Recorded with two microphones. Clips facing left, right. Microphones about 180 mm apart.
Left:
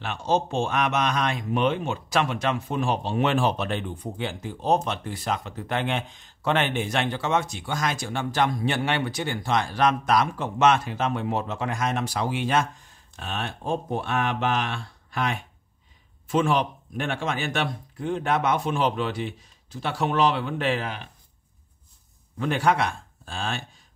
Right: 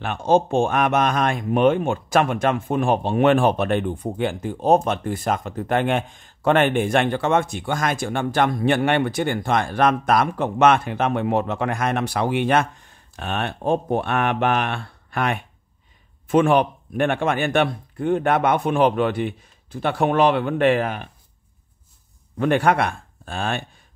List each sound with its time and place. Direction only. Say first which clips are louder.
0.0 s speech: right 6 dB; 50° right (ahead or behind)
22.4 s speech: right 5 dB; 55° right (ahead or behind)